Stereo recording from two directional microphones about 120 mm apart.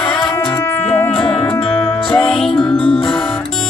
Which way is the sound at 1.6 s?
50° left (ahead or behind).